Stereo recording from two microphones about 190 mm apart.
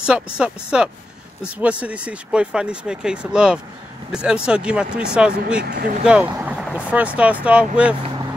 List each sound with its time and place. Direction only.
0.0 s speech: 5° right (ahead or behind)
5.6 s speech: 50° right (ahead or behind)
6.0 s speech: 5° right (ahead or behind)